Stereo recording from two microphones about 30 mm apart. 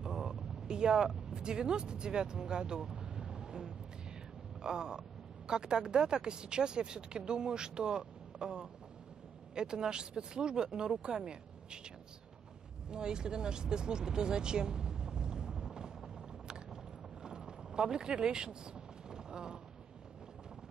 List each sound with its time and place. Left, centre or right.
0.0 s speech: right
2.9 s vehicle: right
4.6 s a sound: right
5.5 s speech: right
12.9 s speech: right
17.2 s vehicle: right
17.9 s speech: right
19.0 s vehicle: right